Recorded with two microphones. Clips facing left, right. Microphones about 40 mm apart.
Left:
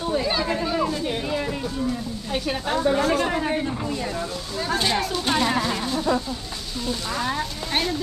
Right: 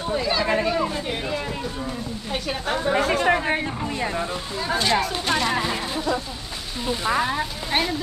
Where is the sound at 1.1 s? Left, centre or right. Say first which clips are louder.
Left 1 dB; centre.